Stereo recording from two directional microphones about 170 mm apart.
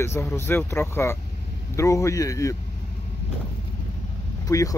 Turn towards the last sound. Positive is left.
turn(degrees=20)  # may be behind; listen again after turning